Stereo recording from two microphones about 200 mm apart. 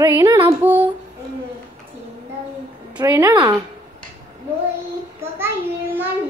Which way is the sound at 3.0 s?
15° right (ahead or behind).